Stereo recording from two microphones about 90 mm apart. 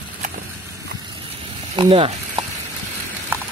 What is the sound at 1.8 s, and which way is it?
Speech, 80° right.